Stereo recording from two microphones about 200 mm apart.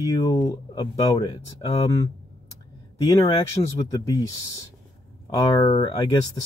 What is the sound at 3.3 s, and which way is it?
Speech, 15° left (ahead or behind).